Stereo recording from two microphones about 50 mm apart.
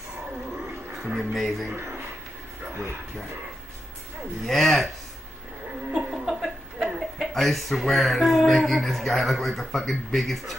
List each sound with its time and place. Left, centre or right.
0.9 s speech: centre
1.8 s a sound: right
2.7 s speech: right
4.5 s speech: centre
5.9 s laughter: centre
6.2 s chuckle: centre
7.3 s speech: centre